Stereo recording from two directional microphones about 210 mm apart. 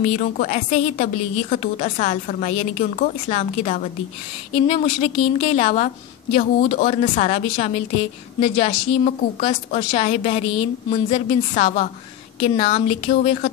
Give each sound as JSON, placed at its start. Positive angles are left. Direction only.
{"t": 0.0, "sound": "a woman's voice", "side_deg": 35}